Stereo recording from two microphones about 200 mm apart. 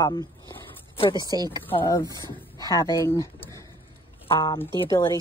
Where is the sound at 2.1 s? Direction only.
20° right (ahead or behind).